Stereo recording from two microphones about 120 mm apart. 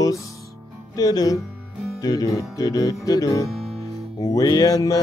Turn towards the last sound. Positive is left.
turn(degrees=30)  # may be behind; listen again after turning